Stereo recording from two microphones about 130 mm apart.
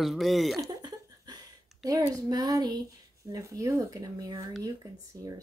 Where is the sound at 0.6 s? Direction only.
30° right (ahead or behind).